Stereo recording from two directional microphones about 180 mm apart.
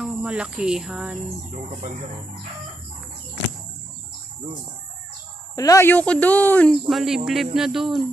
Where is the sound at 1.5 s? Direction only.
40° right (ahead or behind).